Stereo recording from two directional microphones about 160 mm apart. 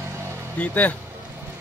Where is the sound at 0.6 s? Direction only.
10° left (ahead or behind).